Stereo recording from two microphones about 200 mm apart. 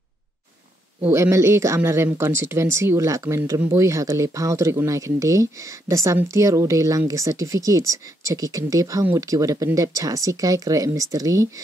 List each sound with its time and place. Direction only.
1.0 s speech: 15° right (ahead or behind)